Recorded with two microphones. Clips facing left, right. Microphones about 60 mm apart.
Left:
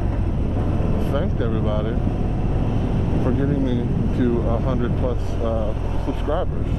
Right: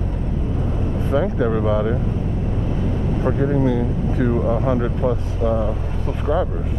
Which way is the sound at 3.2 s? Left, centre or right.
Right.